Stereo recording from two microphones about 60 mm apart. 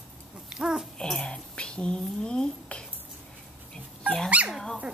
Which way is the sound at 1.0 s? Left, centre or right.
Centre.